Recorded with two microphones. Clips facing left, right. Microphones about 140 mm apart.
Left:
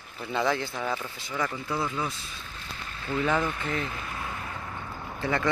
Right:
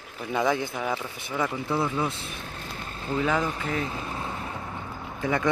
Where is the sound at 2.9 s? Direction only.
30° right (ahead or behind).